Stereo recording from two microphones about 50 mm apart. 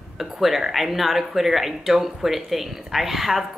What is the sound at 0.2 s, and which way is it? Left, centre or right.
Speech, centre.